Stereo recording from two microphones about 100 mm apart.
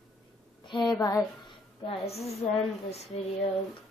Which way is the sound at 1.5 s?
75° left (ahead or behind).